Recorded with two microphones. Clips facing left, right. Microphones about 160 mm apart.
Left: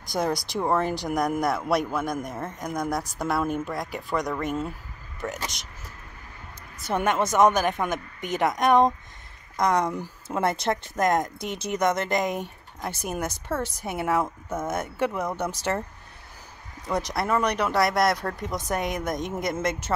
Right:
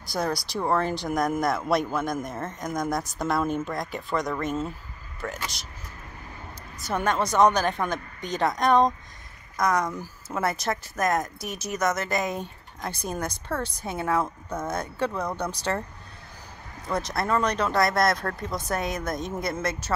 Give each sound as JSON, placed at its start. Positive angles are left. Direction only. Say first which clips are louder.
{"t": 0.0, "sound": "a man's voice", "louder": "left 2 dB", "side_deg": 20}
{"t": 6.9, "sound": "a man's voice", "louder": "left 1 dB", "side_deg": 15}
{"t": 16.8, "sound": "a man's voice", "louder": "left 1 dB", "side_deg": 15}